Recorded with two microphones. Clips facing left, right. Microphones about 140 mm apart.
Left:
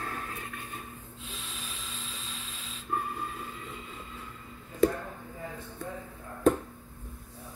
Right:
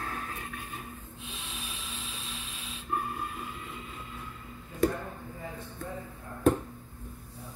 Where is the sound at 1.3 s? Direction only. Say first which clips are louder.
Right 1 dB; 10° right (ahead or behind).